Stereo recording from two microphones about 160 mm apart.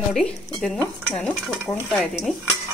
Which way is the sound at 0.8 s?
5° left (ahead or behind).